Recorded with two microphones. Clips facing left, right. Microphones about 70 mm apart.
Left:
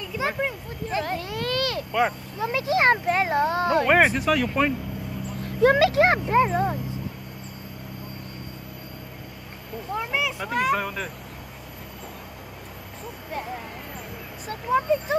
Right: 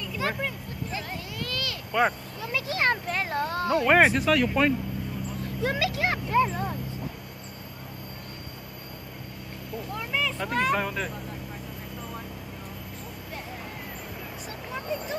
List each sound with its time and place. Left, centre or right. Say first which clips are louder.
0.2 s a child's voice: left 2 dB; centre
0.8 s a sound: left 9 dB; left
1.9 s speech: right 1 dB; centre
2.4 s a child's voice: left 6 dB; left
3.8 s speech: right 2 dB; centre
5.6 s speech: left 10 dB; left
6.2 s a child's voice: left 4 dB; left
9.9 s speech: left 3 dB; centre